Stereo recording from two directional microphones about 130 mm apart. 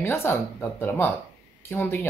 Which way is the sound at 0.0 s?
20° left (ahead or behind).